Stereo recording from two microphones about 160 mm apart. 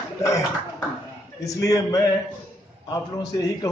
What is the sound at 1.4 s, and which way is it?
A man's voice, 20° left (ahead or behind).